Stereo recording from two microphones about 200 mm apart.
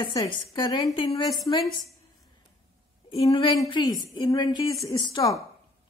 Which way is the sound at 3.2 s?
25° left (ahead or behind).